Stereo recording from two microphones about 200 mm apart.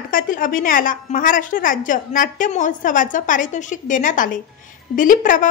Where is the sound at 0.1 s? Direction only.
40° left (ahead or behind).